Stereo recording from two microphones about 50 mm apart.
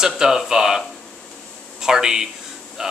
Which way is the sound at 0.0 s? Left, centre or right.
Centre.